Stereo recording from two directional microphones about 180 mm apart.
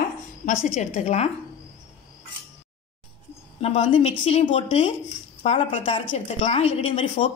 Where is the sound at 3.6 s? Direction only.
30° left (ahead or behind).